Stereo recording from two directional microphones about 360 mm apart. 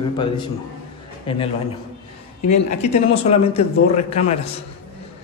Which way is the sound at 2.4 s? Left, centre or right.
Centre.